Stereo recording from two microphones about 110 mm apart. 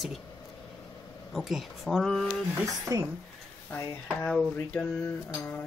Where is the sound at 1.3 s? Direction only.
Centre (ahead or behind).